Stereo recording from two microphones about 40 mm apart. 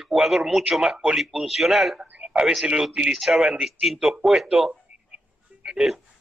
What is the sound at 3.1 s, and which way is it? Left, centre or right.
Speech, centre.